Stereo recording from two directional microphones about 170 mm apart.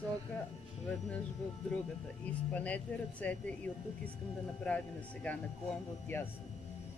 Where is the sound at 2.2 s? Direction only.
10° left (ahead or behind).